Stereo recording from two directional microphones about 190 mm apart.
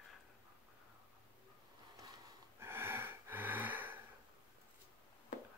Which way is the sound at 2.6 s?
10° right (ahead or behind).